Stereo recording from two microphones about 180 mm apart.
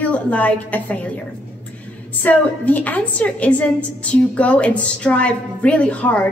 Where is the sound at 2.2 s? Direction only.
10° left (ahead or behind).